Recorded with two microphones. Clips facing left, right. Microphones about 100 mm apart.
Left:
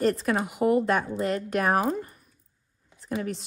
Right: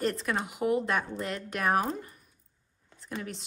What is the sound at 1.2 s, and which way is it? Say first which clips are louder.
Speech: left 6 dB; 45° left (ahead or behind).